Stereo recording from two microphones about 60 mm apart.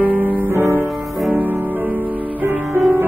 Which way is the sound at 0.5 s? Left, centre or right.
Right.